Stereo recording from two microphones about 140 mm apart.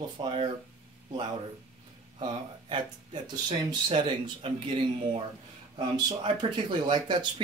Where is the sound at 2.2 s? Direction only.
35° right (ahead or behind).